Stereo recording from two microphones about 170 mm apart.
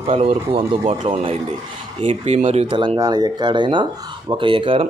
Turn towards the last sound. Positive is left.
turn(degrees=-30)  # may be behind; listen again after turning